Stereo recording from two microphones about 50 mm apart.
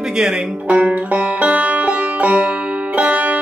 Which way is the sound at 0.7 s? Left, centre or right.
Right.